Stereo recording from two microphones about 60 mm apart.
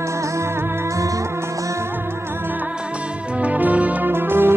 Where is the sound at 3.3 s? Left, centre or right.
Right.